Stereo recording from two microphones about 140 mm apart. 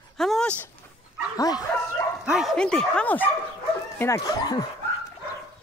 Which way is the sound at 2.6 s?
5° left (ahead or behind).